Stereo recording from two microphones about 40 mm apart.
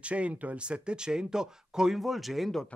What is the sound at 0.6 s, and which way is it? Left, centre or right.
Speech, right.